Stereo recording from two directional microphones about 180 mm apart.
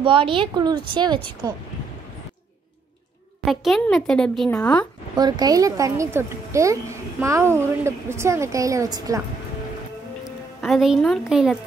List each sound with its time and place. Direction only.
0.0 s speech: 30° right (ahead or behind)
3.4 s a woman's voice: centre (ahead or behind)
5.1 s a woman's voice: 20° right (ahead or behind)
10.2 s speech: centre (ahead or behind)